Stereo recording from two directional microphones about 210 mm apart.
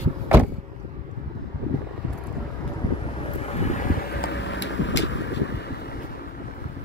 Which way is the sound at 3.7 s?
40° left (ahead or behind).